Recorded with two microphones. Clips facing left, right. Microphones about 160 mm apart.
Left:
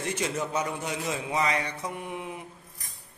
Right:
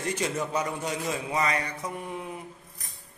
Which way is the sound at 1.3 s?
5° left (ahead or behind).